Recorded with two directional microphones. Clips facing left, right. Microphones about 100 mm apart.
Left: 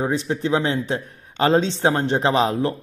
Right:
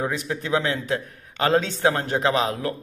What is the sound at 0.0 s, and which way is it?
A man's voice, 25° left (ahead or behind).